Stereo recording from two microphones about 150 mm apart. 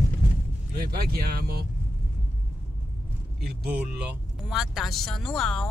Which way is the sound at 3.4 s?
90° right.